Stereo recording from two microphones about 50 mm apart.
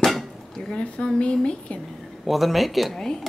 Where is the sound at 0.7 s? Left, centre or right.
Centre.